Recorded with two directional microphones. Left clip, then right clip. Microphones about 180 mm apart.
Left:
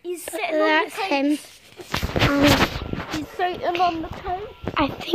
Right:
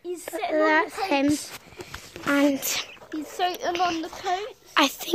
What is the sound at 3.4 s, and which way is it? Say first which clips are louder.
Speech: left 2 dB; 25° left (ahead or behind).